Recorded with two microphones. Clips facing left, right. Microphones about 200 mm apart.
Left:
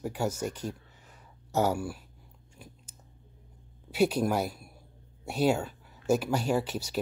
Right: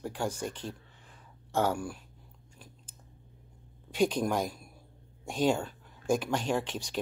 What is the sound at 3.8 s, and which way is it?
Speech, 10° left (ahead or behind).